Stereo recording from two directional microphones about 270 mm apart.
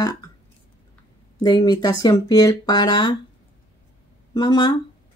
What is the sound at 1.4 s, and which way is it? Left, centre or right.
Speech, centre.